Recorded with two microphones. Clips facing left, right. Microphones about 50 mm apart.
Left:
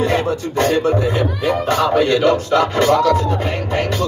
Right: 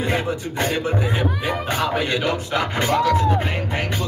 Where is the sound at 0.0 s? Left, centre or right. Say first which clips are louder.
Left 5 dB; centre.